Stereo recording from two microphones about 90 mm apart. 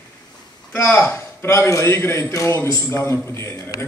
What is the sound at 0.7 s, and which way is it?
A man's voice, 30° left (ahead or behind).